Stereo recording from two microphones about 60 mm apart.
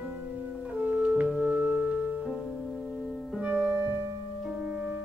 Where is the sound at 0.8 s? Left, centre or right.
Right.